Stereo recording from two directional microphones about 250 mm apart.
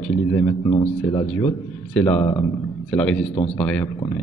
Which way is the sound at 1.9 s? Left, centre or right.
Centre.